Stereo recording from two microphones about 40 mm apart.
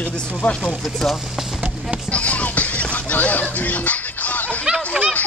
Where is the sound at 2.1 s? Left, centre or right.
Left.